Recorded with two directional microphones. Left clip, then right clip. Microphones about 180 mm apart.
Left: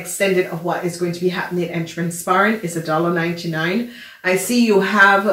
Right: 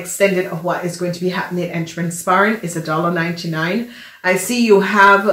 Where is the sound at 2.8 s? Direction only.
35° right (ahead or behind).